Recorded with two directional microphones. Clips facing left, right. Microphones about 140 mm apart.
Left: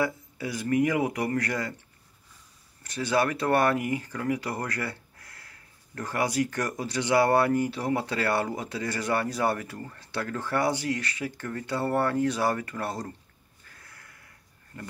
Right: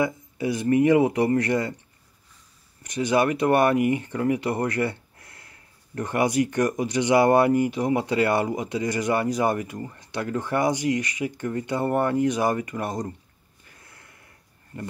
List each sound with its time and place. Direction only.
0.0 s speech: 20° right (ahead or behind)
2.8 s speech: 20° right (ahead or behind)
13.7 s a sound: 25° right (ahead or behind)
14.7 s speech: 20° right (ahead or behind)